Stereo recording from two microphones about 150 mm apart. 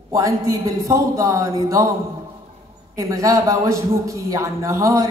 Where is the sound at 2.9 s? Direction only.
20° right (ahead or behind).